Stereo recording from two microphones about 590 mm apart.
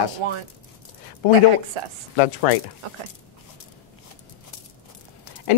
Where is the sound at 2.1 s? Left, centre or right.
Left.